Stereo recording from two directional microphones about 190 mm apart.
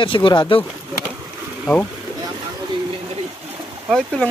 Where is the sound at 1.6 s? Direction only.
10° left (ahead or behind).